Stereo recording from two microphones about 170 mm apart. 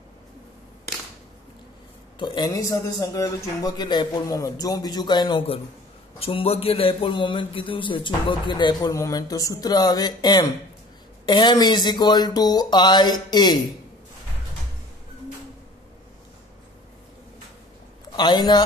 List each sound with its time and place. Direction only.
2.1 s a man's voice: 25° left (ahead or behind)
18.1 s a man's voice: 25° left (ahead or behind)